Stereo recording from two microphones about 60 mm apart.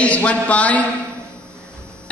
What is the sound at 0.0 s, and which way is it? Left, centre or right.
Speech, left.